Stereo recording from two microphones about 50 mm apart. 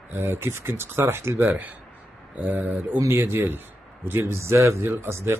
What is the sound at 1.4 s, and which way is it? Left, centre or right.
Speech, right.